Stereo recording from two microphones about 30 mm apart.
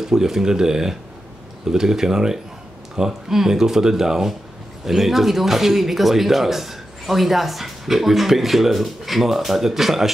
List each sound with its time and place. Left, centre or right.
0.0 s speech: centre